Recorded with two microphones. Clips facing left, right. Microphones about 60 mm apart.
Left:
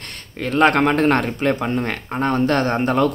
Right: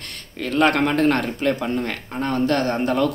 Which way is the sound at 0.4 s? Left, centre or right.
Left.